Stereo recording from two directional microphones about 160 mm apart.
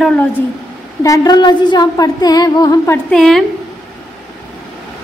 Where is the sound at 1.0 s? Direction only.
20° left (ahead or behind).